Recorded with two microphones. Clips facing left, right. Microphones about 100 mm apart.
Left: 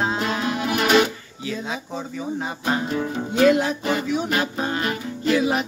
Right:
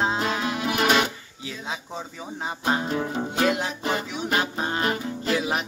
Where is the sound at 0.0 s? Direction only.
20° right (ahead or behind).